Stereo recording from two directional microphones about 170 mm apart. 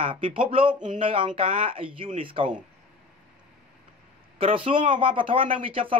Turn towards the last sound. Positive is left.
turn(degrees=-30)  # may be behind; listen again after turning